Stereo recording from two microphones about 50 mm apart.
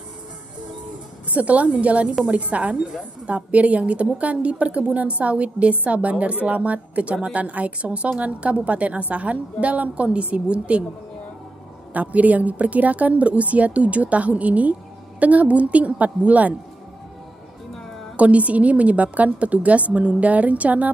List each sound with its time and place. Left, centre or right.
1.3 s a woman's voice: right
11.9 s a woman's voice: right
18.1 s a woman's voice: right